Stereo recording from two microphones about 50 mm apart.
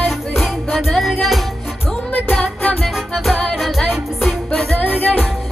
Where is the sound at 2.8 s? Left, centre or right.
Centre.